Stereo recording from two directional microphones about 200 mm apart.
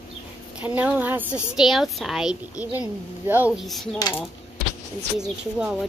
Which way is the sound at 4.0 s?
20° left (ahead or behind).